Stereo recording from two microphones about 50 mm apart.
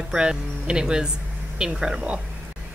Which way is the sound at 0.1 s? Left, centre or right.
Centre.